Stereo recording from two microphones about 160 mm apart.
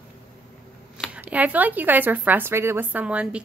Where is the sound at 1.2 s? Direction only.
10° right (ahead or behind).